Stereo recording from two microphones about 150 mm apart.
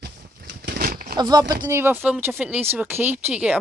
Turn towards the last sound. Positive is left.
turn(degrees=-10)  # may be behind; listen again after turning